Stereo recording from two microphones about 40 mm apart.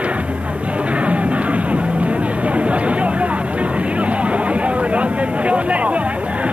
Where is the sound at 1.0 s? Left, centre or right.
Right.